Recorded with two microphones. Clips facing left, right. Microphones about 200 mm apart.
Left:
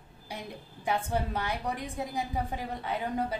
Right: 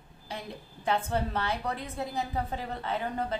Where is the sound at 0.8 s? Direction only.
10° left (ahead or behind).